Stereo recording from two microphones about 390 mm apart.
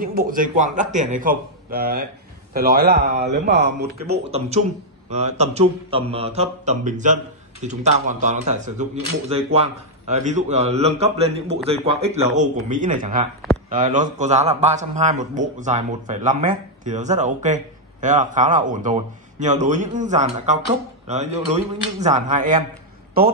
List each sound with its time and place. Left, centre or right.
0.0 s a man's voice: right